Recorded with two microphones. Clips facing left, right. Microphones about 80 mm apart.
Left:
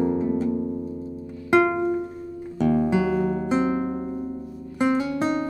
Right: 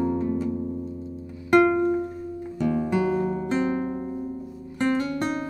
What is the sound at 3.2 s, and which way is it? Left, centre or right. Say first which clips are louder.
Music: left 2 dB; left.